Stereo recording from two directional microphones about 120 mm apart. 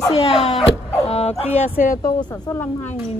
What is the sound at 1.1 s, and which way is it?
Bow-wow, 60° left (ahead or behind).